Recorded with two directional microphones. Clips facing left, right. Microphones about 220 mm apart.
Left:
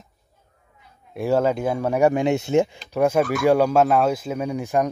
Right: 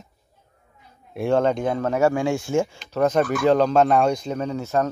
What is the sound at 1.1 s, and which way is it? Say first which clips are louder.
Speech: even; 5° left (ahead or behind).